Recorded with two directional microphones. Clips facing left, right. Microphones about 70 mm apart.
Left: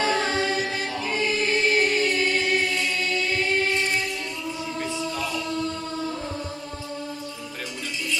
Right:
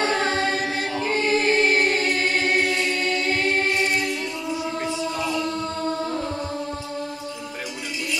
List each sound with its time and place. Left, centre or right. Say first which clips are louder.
0.0 s choir: right 1 dB; right